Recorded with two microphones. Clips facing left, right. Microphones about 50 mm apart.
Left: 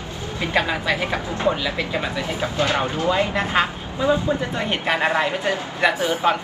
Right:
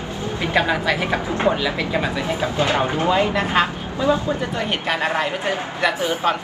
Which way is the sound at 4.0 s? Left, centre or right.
Left.